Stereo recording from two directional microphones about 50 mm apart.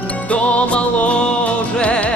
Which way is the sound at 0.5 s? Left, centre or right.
Left.